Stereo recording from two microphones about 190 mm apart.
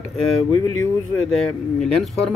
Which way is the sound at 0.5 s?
15° left (ahead or behind).